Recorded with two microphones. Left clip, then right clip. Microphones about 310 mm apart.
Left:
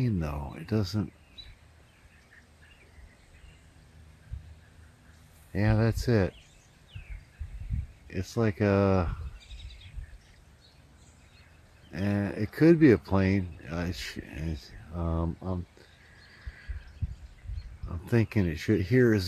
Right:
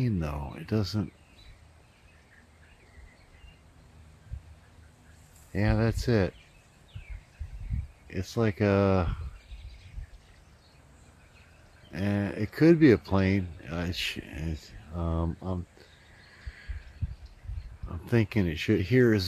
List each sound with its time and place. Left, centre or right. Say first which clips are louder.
0.0 s speech: even; centre
5.5 s speech: even; centre
8.1 s speech: right 1 dB; centre
11.9 s speech: even; centre
17.8 s speech: right 1 dB; centre